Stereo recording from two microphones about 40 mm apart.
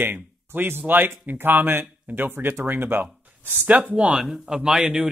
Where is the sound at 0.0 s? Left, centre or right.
Right.